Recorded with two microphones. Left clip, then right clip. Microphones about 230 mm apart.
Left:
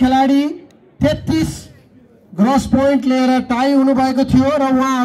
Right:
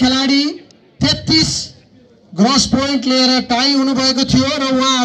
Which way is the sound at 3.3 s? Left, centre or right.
Left.